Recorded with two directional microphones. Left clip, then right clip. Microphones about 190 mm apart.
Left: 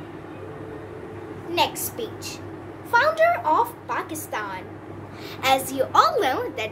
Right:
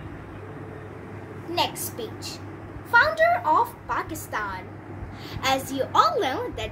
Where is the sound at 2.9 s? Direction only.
10° left (ahead or behind).